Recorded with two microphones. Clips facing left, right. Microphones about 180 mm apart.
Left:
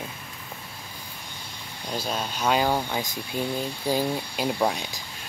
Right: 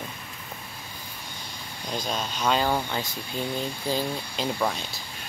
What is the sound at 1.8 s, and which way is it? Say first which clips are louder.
Speech: left 1 dB; 5° left (ahead or behind).